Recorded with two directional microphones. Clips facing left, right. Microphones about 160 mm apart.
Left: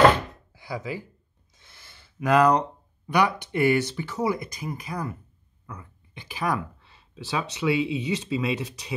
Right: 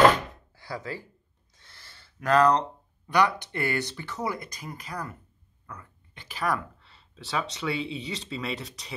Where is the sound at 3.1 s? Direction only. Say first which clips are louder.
Left 1 dB; 15° left (ahead or behind).